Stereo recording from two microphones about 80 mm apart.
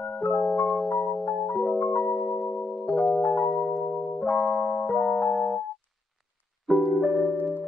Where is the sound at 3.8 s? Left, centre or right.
Left.